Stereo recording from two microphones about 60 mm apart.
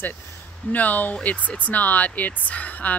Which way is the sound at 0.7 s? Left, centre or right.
Left.